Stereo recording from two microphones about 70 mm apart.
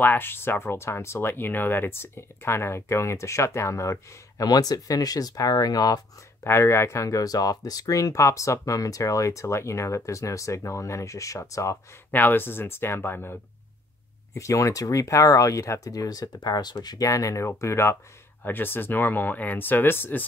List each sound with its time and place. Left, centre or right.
0.0 s speech: left
1.3 s speech: left
4.5 s speech: left
6.4 s speech: left
12.1 s speech: left
14.3 s speech: left
17.1 s speech: left
18.4 s speech: left